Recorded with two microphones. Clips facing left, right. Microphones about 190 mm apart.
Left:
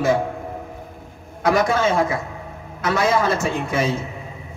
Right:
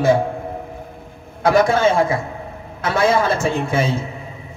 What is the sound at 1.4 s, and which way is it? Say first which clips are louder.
A man's voice: right 3 dB; 30° right (ahead or behind).